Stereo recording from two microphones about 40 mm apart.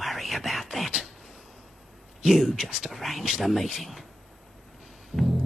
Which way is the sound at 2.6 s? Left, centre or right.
Right.